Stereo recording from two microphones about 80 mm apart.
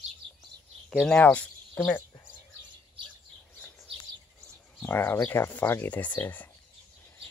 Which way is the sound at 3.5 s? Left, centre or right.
Left.